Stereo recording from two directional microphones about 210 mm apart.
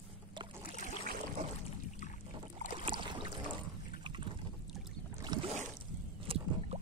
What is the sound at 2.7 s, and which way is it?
Boat, 25° right (ahead or behind).